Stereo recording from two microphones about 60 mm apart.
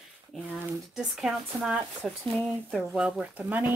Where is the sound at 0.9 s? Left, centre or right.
Centre.